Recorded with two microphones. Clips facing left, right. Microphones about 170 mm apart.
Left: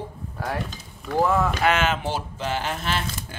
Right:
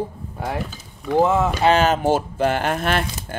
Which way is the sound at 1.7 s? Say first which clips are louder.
Right 7 dB; 40° right (ahead or behind).